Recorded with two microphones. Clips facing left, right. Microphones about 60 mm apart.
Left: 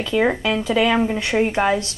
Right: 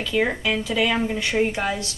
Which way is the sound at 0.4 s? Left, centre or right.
Centre.